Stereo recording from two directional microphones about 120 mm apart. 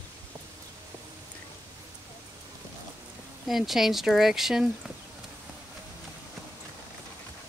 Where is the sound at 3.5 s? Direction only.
Centre (ahead or behind).